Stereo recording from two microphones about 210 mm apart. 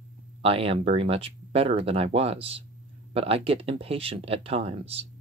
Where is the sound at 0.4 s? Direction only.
25° right (ahead or behind).